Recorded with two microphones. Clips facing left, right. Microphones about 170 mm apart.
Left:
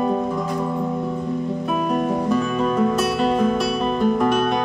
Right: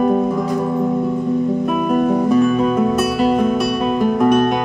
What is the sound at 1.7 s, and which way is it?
Music, 5° right (ahead or behind).